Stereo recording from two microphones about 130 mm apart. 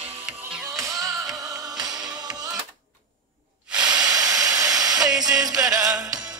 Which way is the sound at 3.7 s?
10° right (ahead or behind).